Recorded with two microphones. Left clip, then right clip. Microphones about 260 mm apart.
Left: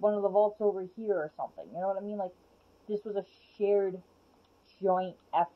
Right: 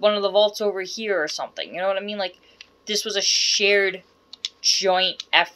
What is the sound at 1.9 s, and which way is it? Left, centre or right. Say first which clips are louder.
Speech: right 9 dB; right.